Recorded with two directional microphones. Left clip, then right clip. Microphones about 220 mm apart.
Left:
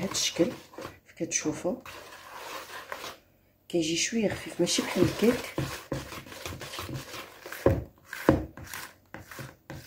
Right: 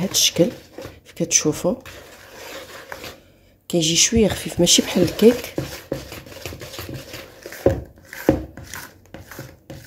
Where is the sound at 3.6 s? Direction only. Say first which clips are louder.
Right 10 dB; 35° right (ahead or behind).